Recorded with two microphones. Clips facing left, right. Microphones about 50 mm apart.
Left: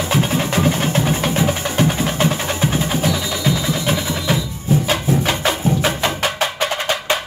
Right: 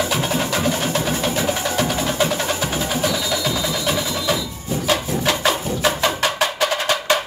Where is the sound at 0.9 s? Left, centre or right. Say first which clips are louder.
Left 2 dB; left.